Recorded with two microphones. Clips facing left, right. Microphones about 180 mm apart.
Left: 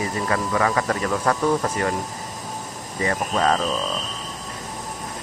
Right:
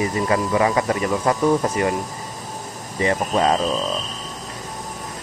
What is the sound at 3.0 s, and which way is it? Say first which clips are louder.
Speech: right 3 dB; 20° right (ahead or behind).